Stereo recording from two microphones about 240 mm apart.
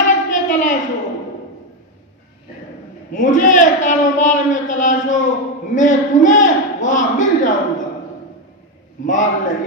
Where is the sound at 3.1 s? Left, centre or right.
Left.